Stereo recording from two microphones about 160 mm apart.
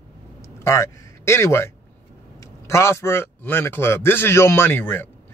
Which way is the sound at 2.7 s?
15° left (ahead or behind).